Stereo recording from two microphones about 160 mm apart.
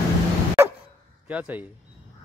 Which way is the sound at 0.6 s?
15° right (ahead or behind).